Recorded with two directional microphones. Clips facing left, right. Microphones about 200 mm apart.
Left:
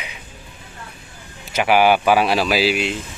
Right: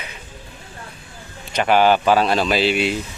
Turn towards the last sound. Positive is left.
turn(degrees=0)  # may be behind; listen again after turning